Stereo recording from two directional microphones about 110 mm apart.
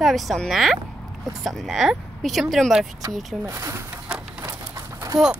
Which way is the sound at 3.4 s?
30° right (ahead or behind).